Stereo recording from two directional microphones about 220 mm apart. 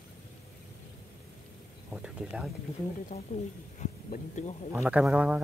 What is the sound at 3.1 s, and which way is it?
Speech, 35° left (ahead or behind).